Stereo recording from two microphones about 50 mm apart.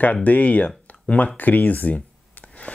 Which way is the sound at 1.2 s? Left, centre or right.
Left.